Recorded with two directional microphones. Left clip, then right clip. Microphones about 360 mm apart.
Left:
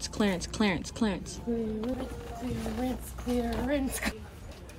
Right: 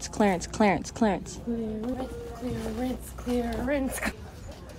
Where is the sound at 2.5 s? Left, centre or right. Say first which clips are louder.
Right 1 dB; centre.